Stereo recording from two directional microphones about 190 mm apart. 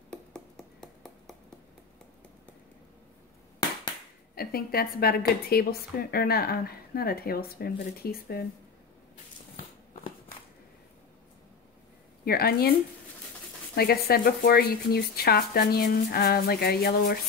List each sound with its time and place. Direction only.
0.1 s a sound: 5° left (ahead or behind)
4.4 s a woman's voice: 50° left (ahead or behind)
12.3 s a woman's voice: 55° left (ahead or behind)
13.7 s a woman's voice: 55° left (ahead or behind)